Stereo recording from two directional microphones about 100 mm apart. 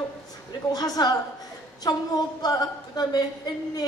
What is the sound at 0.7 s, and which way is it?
Speech, 40° left (ahead or behind).